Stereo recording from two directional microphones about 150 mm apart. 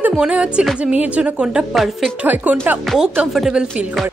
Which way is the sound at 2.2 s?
10° right (ahead or behind).